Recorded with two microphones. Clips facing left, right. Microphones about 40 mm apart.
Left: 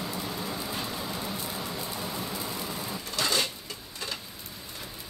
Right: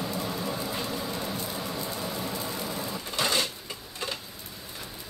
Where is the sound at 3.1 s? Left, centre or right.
Right.